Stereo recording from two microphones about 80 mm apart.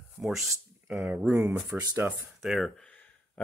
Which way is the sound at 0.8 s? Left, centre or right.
Right.